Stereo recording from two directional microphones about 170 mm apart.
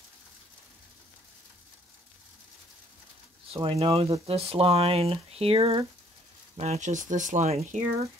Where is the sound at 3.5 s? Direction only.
35° right (ahead or behind).